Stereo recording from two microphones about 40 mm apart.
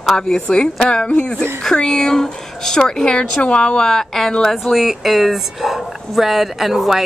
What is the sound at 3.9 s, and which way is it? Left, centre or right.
Speech, centre.